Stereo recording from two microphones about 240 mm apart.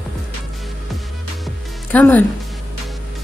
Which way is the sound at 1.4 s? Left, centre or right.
Centre.